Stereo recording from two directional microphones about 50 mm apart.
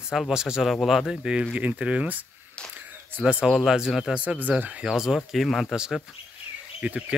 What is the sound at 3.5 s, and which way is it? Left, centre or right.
Speech, centre.